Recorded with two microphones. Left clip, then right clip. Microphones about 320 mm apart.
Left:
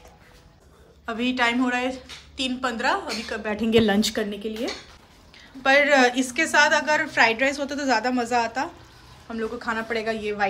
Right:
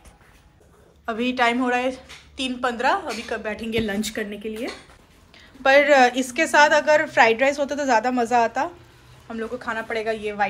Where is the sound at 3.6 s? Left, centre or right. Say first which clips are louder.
Left 5 dB; left.